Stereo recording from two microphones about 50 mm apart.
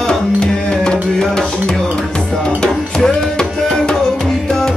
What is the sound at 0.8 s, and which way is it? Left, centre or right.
Music, centre.